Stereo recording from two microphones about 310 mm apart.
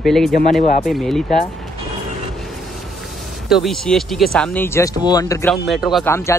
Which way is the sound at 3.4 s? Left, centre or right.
Centre.